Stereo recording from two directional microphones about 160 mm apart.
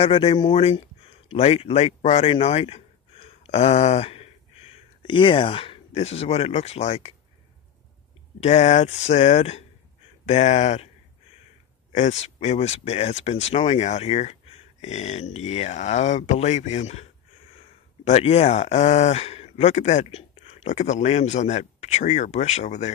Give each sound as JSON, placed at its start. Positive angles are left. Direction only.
{"t": 0.0, "sound": "speech", "side_deg": 35}
{"t": 8.4, "sound": "speech", "side_deg": 45}
{"t": 11.9, "sound": "speech", "side_deg": 45}
{"t": 18.0, "sound": "speech", "side_deg": 40}